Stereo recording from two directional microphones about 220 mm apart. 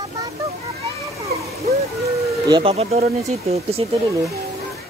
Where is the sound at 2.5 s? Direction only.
25° right (ahead or behind).